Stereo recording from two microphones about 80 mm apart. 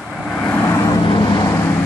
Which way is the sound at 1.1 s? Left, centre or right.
Left.